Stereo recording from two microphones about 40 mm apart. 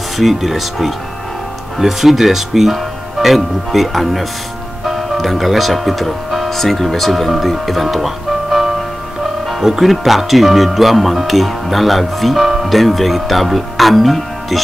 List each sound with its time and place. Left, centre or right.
0.2 s speech: centre